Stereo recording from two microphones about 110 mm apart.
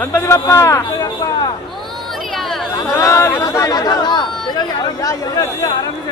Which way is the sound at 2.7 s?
30° left (ahead or behind).